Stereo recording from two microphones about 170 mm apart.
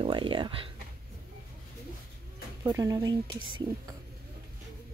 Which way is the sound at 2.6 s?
20° right (ahead or behind).